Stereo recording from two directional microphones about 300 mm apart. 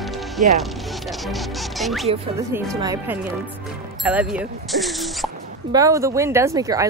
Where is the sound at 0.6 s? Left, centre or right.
Centre.